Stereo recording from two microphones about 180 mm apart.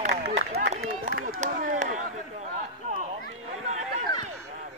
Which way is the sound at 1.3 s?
45° right (ahead or behind).